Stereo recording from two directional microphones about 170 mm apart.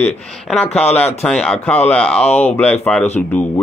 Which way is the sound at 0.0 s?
5° left (ahead or behind).